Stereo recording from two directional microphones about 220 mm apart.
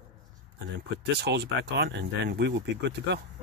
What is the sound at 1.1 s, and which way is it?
Speech, 50° right (ahead or behind).